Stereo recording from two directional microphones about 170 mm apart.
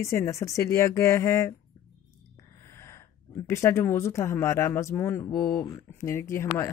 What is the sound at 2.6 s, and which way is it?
Speech, 15° left (ahead or behind).